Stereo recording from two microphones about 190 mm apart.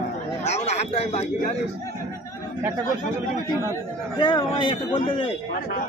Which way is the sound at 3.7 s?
20° left (ahead or behind).